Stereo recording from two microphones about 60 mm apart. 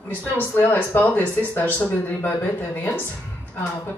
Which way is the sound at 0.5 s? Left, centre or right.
Left.